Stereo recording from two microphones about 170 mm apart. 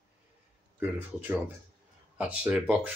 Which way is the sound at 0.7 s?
10° right (ahead or behind).